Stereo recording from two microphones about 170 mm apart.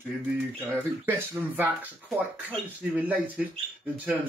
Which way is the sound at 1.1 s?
10° right (ahead or behind).